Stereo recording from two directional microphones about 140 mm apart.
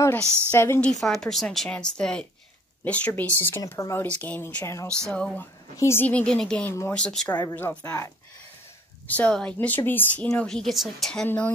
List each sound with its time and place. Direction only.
0.5 s a woman's voice: 15° left (ahead or behind)
9.0 s a woman's voice: 10° left (ahead or behind)
11.2 s speech: 15° left (ahead or behind)